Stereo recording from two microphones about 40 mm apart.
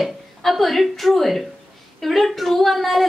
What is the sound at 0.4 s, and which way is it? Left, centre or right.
A woman's voice, centre.